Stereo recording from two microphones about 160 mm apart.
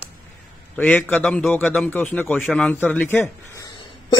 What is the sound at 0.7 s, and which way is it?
A man's voice, 10° left (ahead or behind).